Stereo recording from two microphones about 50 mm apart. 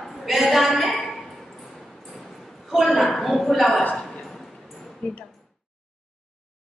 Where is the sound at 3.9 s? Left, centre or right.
Centre.